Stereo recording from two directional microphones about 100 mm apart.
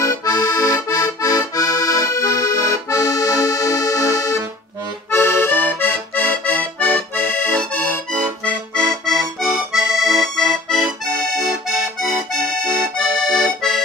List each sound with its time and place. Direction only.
0.0 s accordion: 35° left (ahead or behind)
5.1 s accordion: 25° left (ahead or behind)
9.7 s accordion: 5° right (ahead or behind)
12.9 s accordion: 5° left (ahead or behind)